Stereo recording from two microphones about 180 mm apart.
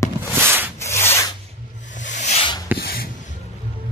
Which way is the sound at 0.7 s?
15° left (ahead or behind).